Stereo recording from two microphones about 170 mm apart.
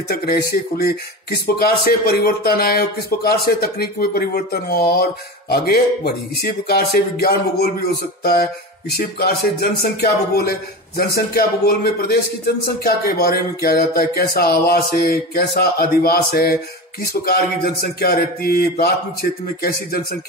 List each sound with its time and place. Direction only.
0.1 s speech: 65° left (ahead or behind)
8.2 s a sound: 65° left (ahead or behind)
8.9 s speech: 65° left (ahead or behind)